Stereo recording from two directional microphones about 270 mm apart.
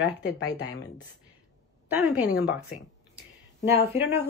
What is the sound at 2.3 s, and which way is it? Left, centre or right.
Speech, left.